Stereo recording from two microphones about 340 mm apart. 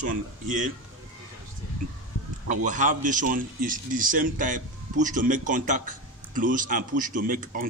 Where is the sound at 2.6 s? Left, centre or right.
Right.